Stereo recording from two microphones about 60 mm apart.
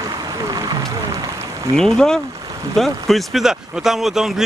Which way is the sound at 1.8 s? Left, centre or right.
Centre.